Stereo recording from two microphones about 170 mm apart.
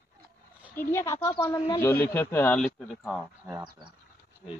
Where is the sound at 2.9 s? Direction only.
Centre (ahead or behind).